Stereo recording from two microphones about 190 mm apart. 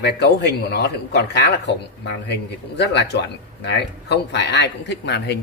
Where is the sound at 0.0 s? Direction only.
60° left (ahead or behind).